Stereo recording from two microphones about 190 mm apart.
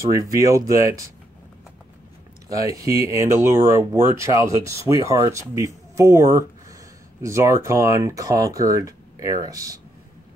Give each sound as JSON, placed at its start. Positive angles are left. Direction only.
{"t": 0.2, "sound": "speech", "side_deg": -20}
{"t": 2.6, "sound": "speech", "side_deg": -20}